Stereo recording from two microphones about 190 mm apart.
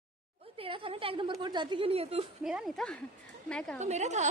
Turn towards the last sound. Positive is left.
turn(degrees=-35)  # may be behind; listen again after turning